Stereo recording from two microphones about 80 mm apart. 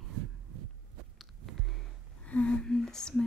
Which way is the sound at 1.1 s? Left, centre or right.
Centre.